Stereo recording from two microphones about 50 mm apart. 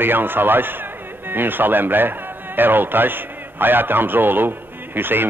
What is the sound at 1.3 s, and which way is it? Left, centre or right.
A man's voice, right.